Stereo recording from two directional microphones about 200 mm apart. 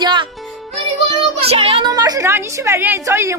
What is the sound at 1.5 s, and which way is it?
A woman's voice, 30° right (ahead or behind).